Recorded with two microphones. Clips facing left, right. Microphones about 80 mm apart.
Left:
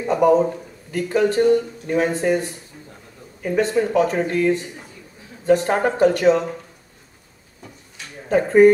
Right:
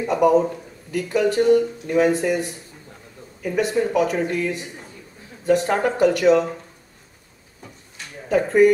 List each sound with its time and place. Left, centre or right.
0.1 s a man's voice: left
8.3 s speech: left